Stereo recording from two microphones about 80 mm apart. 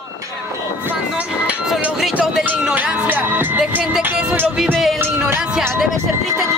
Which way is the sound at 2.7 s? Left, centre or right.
Right.